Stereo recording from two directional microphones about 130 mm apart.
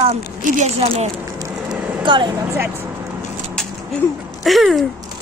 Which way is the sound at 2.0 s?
40° right (ahead or behind).